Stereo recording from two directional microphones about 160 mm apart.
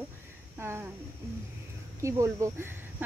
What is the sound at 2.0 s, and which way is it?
Speech, 20° right (ahead or behind).